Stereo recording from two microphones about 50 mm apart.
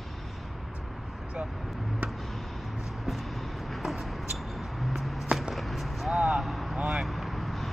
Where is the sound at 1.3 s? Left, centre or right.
Centre.